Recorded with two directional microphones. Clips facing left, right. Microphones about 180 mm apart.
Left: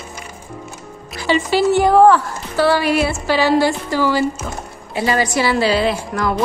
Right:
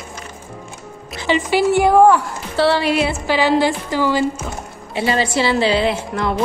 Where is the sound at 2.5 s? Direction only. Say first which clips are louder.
Left 1 dB; 25° right (ahead or behind).